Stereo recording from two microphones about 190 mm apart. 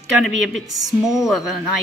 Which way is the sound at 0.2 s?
Centre (ahead or behind).